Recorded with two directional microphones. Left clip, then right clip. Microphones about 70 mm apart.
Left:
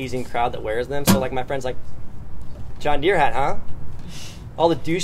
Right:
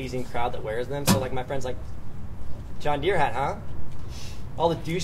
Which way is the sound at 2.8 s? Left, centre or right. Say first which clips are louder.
Left 5 dB; left.